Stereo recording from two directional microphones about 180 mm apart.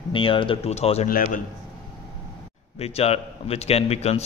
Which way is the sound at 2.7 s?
35° left (ahead or behind).